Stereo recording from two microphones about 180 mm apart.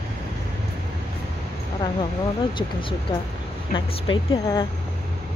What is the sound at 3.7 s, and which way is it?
Speech, 25° left (ahead or behind).